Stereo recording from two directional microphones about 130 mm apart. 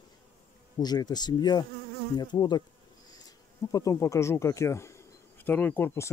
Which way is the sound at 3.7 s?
25° left (ahead or behind).